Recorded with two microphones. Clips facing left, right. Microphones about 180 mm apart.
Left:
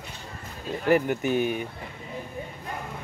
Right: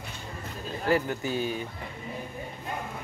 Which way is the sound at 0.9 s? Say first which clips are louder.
Left 5 dB; 20° left (ahead or behind).